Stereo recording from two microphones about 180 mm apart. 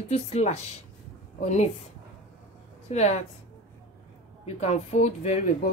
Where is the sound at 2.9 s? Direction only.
40° left (ahead or behind).